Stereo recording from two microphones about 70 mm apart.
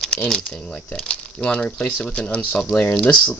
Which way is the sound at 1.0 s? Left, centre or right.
Centre.